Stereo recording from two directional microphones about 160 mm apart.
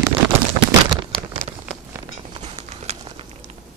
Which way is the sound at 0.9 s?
30° right (ahead or behind).